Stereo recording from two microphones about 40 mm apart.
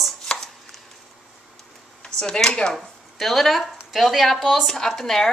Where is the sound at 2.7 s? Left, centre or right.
Centre.